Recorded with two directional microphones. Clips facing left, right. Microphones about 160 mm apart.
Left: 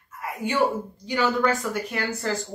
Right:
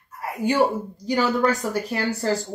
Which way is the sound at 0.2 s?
35° right (ahead or behind).